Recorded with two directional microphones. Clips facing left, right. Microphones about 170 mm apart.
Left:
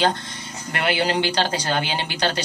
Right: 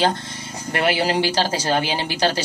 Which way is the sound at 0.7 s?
30° right (ahead or behind).